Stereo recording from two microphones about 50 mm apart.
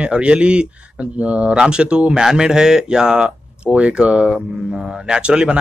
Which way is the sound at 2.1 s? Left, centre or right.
Centre.